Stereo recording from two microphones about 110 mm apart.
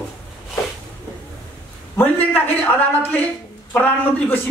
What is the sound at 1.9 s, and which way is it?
A man's voice, 15° left (ahead or behind).